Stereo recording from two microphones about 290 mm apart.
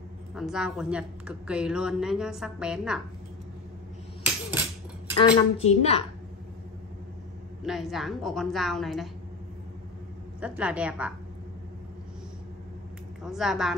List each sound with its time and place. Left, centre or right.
0.3 s speech: centre
5.1 s a woman's voice: left
7.6 s speech: centre
10.4 s speech: centre
13.2 s speech: centre